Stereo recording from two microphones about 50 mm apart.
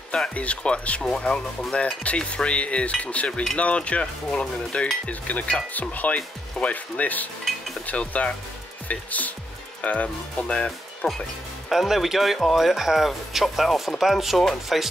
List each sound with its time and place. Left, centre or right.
0.3 s cutlery: left
5.0 s speech: left
7.8 s cutlery: left
8.8 s speech: left
9.8 s cutlery: left
11.7 s speech: centre